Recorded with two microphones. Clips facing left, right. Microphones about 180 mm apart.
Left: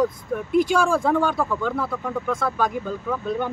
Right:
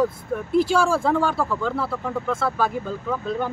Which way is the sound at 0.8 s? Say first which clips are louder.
Even; 5° right (ahead or behind).